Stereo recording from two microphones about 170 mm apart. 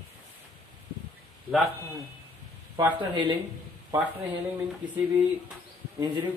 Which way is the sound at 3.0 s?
25° right (ahead or behind).